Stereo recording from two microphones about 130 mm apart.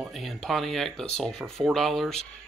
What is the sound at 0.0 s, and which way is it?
Speech, centre (ahead or behind).